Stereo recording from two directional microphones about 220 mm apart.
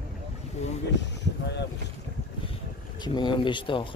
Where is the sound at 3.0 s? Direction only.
20° left (ahead or behind).